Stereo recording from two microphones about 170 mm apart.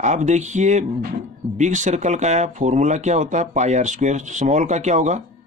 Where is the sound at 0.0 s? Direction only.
45° right (ahead or behind).